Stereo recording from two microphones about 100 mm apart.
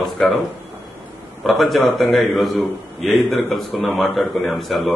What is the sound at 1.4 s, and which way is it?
A man's voice, centre (ahead or behind).